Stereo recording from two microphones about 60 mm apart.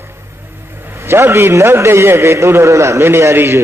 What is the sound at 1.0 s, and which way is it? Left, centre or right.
A man's voice, right.